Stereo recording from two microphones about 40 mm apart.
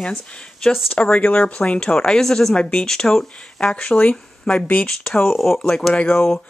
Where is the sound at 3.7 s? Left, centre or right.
Left.